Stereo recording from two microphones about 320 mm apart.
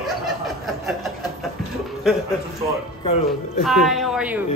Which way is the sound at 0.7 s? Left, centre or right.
Centre.